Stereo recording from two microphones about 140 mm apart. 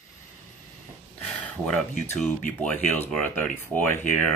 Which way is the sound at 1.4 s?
5° left (ahead or behind).